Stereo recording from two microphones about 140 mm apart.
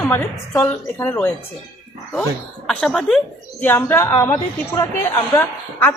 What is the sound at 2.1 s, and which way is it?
Speech, 5° left (ahead or behind).